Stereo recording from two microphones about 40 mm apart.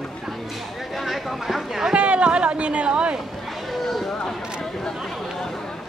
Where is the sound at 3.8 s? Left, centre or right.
Centre.